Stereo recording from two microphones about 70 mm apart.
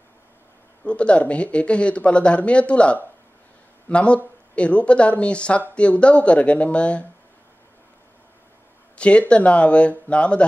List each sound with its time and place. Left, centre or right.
0.8 s speech: centre
8.9 s a sound: centre
9.3 s speech: centre